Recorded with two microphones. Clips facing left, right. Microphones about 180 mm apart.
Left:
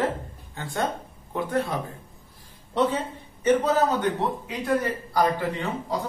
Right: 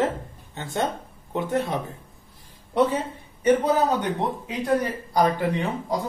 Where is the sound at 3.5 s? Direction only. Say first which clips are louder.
Right 1 dB; 15° right (ahead or behind).